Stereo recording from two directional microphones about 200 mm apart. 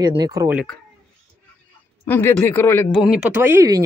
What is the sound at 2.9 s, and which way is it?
Speech, 5° right (ahead or behind).